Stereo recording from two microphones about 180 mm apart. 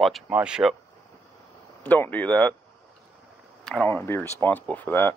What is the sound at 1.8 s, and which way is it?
Speech, 10° left (ahead or behind).